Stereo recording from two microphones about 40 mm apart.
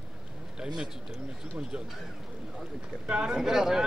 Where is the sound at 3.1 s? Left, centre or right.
Right.